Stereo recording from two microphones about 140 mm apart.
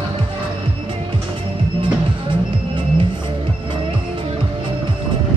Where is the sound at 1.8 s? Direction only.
35° right (ahead or behind).